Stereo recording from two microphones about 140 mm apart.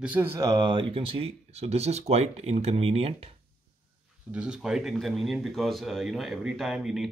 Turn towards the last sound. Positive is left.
turn(degrees=-5)  # may be behind; listen again after turning